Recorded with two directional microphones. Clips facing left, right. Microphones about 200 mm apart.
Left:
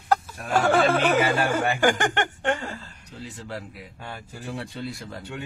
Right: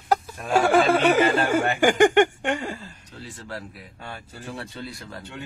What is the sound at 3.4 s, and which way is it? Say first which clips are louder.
Speech: left 1 dB; 15° left (ahead or behind).